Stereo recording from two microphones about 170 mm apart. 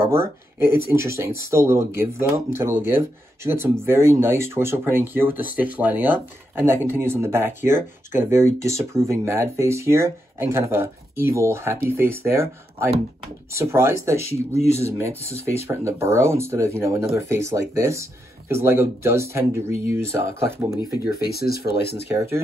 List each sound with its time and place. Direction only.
0.1 s speech: 15° right (ahead or behind)
21.3 s speech: 65° left (ahead or behind)